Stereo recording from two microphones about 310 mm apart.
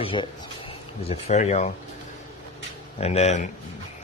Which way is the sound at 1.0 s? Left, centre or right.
Centre.